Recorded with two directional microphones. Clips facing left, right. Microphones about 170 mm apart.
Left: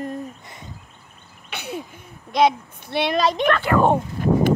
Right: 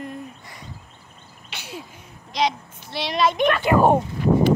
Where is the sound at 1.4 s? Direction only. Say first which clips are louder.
Left 6 dB; 55° left (ahead or behind).